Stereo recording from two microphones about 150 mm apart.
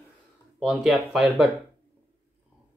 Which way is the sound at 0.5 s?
Centre (ahead or behind).